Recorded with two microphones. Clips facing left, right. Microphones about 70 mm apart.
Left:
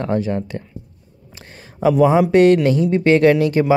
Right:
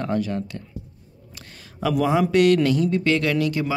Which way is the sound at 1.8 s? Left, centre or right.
Left.